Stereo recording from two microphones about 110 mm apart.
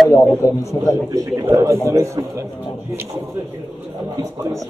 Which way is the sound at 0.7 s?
30° left (ahead or behind).